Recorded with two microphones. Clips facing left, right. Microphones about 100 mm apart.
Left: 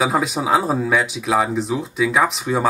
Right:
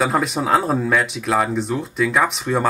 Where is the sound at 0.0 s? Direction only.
Centre (ahead or behind).